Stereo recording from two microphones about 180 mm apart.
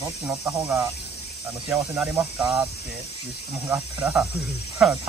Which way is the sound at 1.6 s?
15° right (ahead or behind).